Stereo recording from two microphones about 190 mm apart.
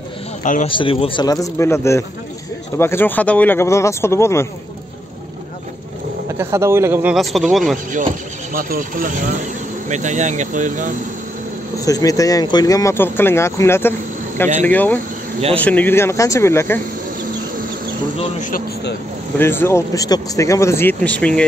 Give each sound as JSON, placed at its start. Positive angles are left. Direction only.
{"t": 0.4, "sound": "a man's voice", "side_deg": 40}
{"t": 0.7, "sound": "speech", "side_deg": 25}
{"t": 6.3, "sound": "speech", "side_deg": -15}
{"t": 7.7, "sound": "speech", "side_deg": -45}
{"t": 11.8, "sound": "speech", "side_deg": 20}
{"t": 18.1, "sound": "speech", "side_deg": 40}
{"t": 19.3, "sound": "speech", "side_deg": 10}